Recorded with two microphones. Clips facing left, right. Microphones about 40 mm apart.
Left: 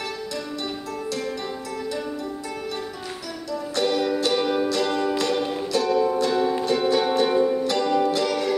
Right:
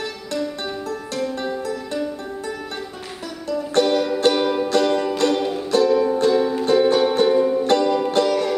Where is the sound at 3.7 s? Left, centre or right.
Right.